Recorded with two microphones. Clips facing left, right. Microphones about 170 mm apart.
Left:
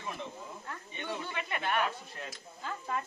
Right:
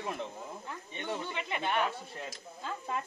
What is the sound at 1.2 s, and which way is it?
Speech, 20° right (ahead or behind).